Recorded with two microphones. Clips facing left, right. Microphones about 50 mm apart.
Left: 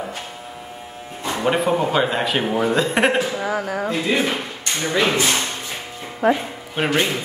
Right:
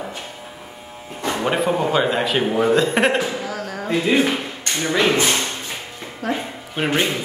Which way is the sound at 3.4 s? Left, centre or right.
Centre.